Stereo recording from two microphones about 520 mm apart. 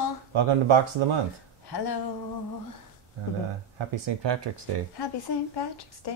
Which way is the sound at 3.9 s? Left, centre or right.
Right.